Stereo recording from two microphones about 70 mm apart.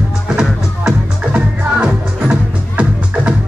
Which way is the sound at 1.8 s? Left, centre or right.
Centre.